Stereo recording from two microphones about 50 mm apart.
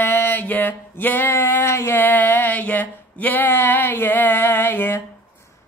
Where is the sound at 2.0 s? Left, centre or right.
Left.